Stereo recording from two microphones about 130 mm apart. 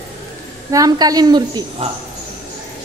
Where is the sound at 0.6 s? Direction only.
30° right (ahead or behind).